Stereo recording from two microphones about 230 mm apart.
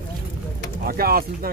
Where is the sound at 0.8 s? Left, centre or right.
Right.